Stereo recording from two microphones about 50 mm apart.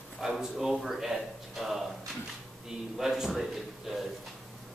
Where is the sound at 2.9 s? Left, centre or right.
Centre.